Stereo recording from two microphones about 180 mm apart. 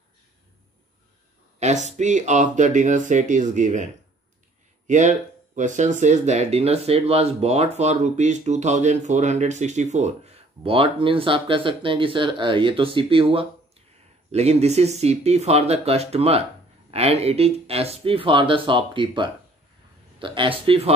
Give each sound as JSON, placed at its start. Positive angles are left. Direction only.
{"t": 1.6, "sound": "speech", "side_deg": -40}
{"t": 4.8, "sound": "speech", "side_deg": -40}